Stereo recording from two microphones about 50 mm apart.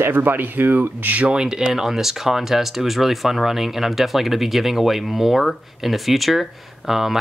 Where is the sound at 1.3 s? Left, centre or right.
Centre.